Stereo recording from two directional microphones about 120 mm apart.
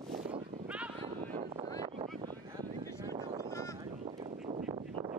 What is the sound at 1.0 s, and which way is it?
Vehicle, 65° right (ahead or behind).